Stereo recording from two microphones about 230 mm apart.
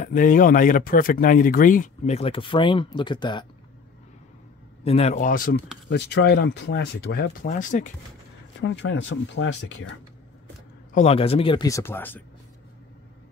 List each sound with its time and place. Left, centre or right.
0.0 s speech: left; by 3.4 s centre
4.8 s speech: left
5.9 s speech: left
8.5 s speech: left
10.9 s speech: left; by 12.2 s centre